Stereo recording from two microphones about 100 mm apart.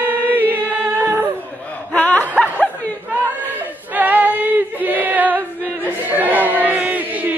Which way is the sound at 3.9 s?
15° right (ahead or behind).